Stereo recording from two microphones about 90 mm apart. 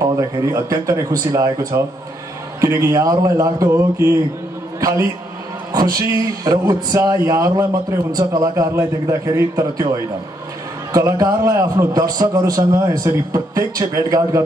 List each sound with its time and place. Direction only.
0.0 s a man's voice: 35° right (ahead or behind)
8.7 s a man's voice: 35° right (ahead or behind)